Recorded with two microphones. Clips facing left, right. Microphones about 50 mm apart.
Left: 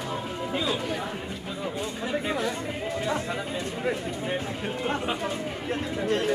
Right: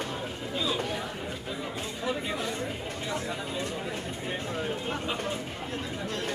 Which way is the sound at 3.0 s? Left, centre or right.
Left.